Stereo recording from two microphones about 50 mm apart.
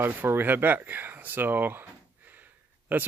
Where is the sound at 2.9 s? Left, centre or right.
Right.